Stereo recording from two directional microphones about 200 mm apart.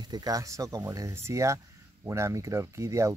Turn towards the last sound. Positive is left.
turn(degrees=-15)  # may be behind; listen again after turning